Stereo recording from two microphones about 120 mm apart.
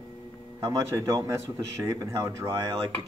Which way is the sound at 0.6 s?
30° right (ahead or behind).